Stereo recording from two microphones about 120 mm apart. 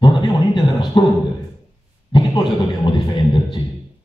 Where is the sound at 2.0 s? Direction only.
40° left (ahead or behind).